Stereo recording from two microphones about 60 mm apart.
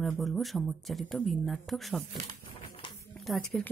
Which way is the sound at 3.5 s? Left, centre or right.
Left.